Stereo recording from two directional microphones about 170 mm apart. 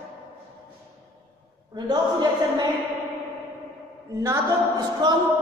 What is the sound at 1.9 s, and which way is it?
Speech, 25° right (ahead or behind).